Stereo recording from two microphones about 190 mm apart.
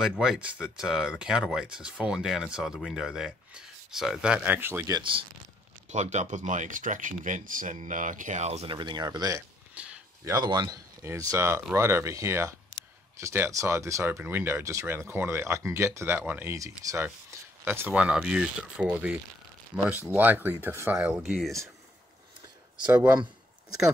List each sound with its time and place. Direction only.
0.0 s speech: 5° right (ahead or behind); by 5.2 s 25° right (ahead or behind)
5.9 s speech: 35° right (ahead or behind); by 21.5 s centre (ahead or behind)